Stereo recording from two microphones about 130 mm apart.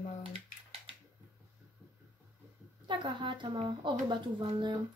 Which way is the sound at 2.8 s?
35° right (ahead or behind).